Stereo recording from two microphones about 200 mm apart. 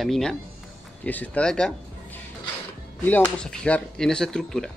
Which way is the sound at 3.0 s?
10° left (ahead or behind).